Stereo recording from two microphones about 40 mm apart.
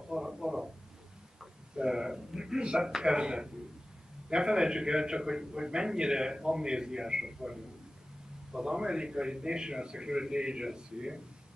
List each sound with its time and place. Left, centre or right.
0.1 s a sound: centre
1.8 s a man's voice: centre
8.5 s a man's voice: centre